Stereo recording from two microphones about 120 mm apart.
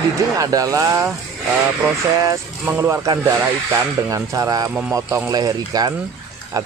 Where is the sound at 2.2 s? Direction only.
25° right (ahead or behind).